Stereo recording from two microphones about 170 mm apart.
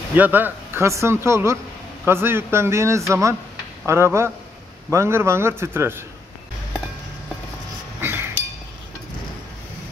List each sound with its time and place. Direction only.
0.1 s speech: 10° right (ahead or behind)
8.0 s chink: 15° right (ahead or behind)